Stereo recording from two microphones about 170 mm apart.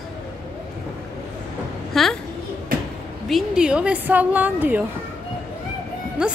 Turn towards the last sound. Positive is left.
turn(degrees=-5)  # may be behind; listen again after turning